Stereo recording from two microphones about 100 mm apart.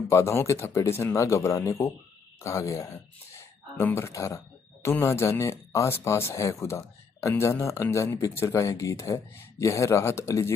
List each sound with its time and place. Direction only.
0.1 s speech: 25° left (ahead or behind)